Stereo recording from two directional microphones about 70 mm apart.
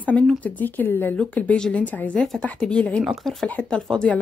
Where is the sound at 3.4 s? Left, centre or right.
Centre.